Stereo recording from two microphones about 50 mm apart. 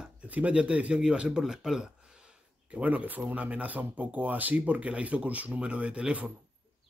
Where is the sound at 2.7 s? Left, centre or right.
Right.